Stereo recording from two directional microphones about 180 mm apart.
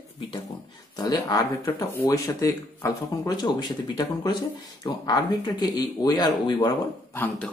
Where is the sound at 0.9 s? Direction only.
20° left (ahead or behind).